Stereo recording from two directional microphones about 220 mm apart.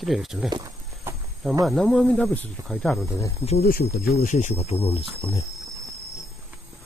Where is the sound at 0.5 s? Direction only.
15° right (ahead or behind).